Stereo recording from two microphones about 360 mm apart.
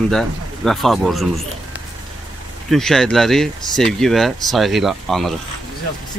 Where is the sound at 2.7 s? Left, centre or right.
Centre.